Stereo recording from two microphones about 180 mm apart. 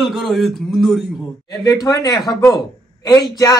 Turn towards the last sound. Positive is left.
turn(degrees=20)  # may be behind; listen again after turning